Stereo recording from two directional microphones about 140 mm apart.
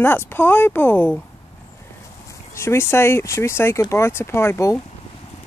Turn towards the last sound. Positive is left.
turn(degrees=20)  # may be behind; listen again after turning